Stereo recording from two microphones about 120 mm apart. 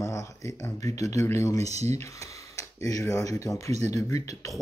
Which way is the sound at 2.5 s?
25° left (ahead or behind).